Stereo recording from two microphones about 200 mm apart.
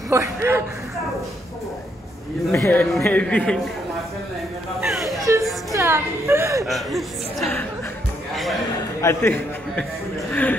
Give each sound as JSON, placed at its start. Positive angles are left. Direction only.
{"t": 0.1, "sound": "a woman's voice", "side_deg": -15}
{"t": 2.5, "sound": "a man's voice", "side_deg": 10}
{"t": 4.7, "sound": "speech", "side_deg": 0}
{"t": 5.0, "sound": "a woman's voice", "side_deg": -15}
{"t": 6.6, "sound": "speech", "side_deg": 0}
{"t": 9.0, "sound": "a man's voice", "side_deg": 10}